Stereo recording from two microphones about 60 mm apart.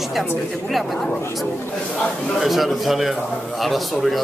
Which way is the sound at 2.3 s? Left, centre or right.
Centre.